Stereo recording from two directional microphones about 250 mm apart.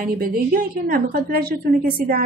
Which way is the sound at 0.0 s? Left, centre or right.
Right.